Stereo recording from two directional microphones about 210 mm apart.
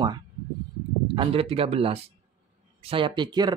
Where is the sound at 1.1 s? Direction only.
25° right (ahead or behind).